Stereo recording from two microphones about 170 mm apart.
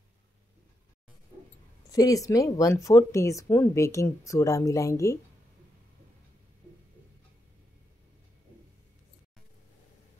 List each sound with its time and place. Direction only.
1.9 s speech: 20° left (ahead or behind)